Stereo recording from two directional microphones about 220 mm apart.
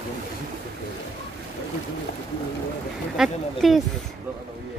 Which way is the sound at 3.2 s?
Centre (ahead or behind).